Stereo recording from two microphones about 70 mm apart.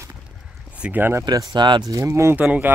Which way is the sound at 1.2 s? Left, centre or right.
Right.